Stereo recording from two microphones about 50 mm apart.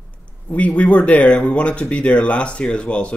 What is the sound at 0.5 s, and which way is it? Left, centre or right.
Speech, left.